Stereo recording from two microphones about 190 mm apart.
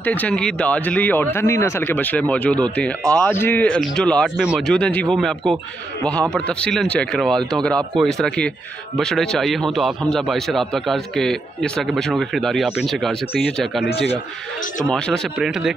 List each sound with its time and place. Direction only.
0.0 s a man's voice: 10° left (ahead or behind)
14.9 s a man's voice: centre (ahead or behind)